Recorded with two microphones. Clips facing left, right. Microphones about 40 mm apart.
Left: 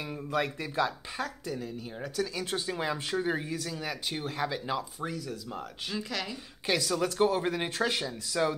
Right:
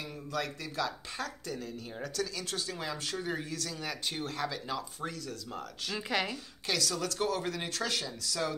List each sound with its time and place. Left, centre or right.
0.3 s speech: left
1.1 s speech: centre
2.3 s speech: left
4.5 s speech: centre
5.0 s speech: centre
5.9 s a woman's voice: right
6.7 s speech: left